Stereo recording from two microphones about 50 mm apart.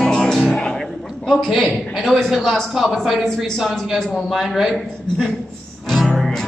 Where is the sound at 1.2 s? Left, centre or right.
Centre.